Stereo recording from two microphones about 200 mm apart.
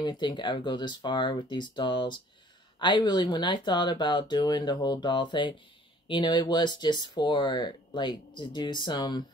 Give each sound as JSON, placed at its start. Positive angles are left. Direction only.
{"t": 0.0, "sound": "speech", "side_deg": 20}